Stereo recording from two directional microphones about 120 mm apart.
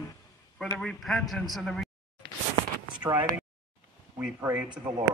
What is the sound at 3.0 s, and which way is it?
Speech, 35° right (ahead or behind).